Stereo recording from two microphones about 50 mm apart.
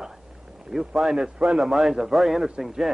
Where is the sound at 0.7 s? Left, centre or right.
Centre.